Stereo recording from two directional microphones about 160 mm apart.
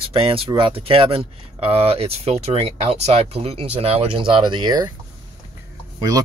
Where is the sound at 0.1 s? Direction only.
35° right (ahead or behind).